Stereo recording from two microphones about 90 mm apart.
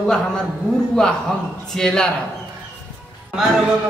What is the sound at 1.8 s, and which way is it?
Speech, 10° left (ahead or behind).